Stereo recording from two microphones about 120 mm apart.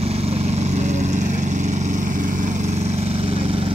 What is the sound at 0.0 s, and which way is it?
Vehicle, 55° right (ahead or behind).